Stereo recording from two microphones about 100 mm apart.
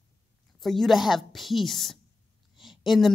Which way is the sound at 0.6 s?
Centre (ahead or behind).